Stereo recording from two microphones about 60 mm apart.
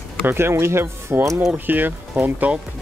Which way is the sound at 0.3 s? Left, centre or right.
Right.